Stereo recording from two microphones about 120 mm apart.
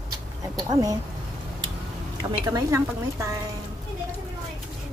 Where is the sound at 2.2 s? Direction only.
35° right (ahead or behind).